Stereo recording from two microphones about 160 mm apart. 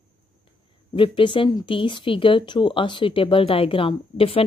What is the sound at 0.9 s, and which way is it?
Speech, 30° left (ahead or behind).